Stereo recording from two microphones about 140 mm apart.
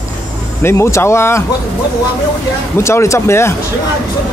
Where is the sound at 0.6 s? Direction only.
20° left (ahead or behind).